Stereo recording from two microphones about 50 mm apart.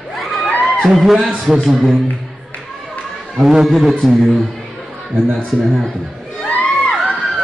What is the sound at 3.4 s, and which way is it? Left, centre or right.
Speech, centre.